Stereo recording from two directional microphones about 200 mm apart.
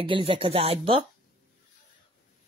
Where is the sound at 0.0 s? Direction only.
25° right (ahead or behind).